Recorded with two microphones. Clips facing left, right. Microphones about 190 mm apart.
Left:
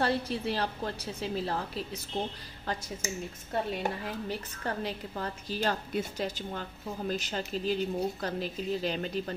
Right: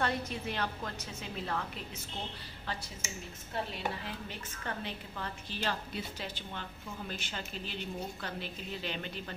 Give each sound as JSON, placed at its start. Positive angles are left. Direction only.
{"t": 0.0, "sound": "a woman's voice", "side_deg": 35}